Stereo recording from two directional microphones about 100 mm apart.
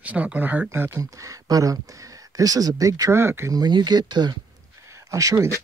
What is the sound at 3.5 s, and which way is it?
Speech, 45° right (ahead or behind).